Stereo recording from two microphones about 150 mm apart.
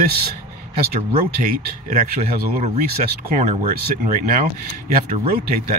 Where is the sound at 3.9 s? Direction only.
65° right (ahead or behind).